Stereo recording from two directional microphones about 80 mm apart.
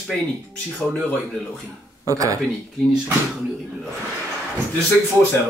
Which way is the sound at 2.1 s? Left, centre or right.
Right.